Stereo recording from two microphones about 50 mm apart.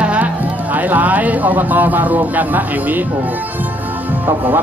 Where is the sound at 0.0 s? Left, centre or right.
Right.